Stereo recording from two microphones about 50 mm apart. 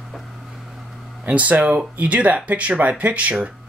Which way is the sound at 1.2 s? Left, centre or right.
Right.